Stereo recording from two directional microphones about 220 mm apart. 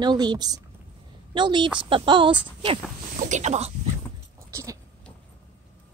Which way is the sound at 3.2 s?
35° right (ahead or behind).